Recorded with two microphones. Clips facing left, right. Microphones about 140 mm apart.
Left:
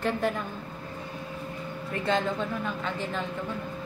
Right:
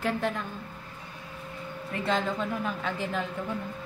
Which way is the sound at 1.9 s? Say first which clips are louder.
Left 1 dB; centre (ahead or behind).